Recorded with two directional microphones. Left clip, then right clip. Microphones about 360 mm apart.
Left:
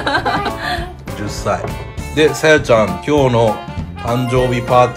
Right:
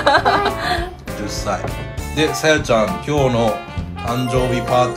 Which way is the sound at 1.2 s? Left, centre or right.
Centre.